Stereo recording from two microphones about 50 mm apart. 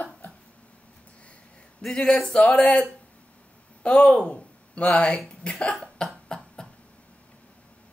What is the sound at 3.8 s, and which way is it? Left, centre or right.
Speech, left.